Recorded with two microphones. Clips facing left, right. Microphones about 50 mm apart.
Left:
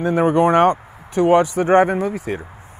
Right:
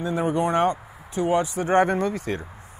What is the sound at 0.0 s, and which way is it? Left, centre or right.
Speech, left.